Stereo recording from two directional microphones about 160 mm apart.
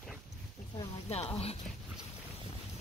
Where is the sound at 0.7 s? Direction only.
40° left (ahead or behind).